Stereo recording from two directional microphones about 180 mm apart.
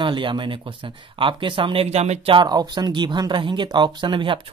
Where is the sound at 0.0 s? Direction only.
25° right (ahead or behind).